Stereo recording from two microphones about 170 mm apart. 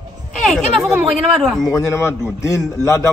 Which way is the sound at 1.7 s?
15° left (ahead or behind).